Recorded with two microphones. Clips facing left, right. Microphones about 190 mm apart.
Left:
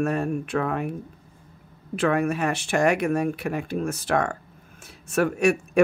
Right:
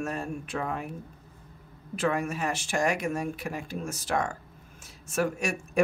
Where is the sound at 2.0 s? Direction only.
60° left (ahead or behind).